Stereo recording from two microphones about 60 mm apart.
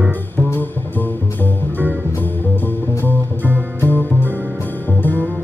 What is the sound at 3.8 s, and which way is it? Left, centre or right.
Music, left.